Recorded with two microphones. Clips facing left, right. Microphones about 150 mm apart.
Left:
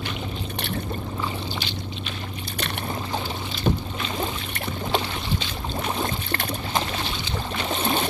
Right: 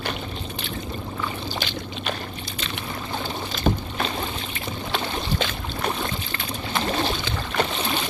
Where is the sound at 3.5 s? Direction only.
45° right (ahead or behind).